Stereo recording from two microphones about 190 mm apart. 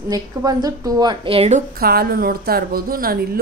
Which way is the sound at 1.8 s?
55° right (ahead or behind).